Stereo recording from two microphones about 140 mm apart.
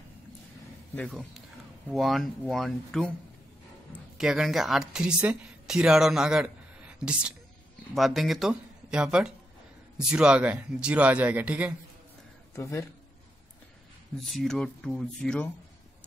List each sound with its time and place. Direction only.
0.9 s speech: 5° left (ahead or behind)
4.2 s speech: 5° right (ahead or behind)
12.5 s speech: 20° left (ahead or behind)
14.2 s speech: centre (ahead or behind)